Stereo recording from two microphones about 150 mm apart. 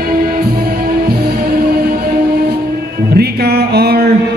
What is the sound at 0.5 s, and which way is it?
Music, 90° right.